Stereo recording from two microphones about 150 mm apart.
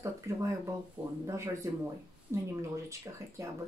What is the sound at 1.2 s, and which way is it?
Speech, 20° right (ahead or behind).